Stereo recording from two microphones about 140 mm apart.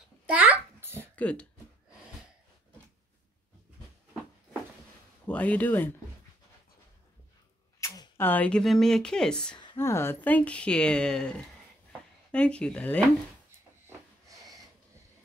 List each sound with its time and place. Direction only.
0.3 s a sound: 10° right (ahead or behind)
1.1 s speech: 10° left (ahead or behind)
5.2 s speech: 10° left (ahead or behind)
7.8 s arrow: 25° left (ahead or behind)
8.2 s speech: 10° left (ahead or behind)
9.8 s speech: 20° left (ahead or behind)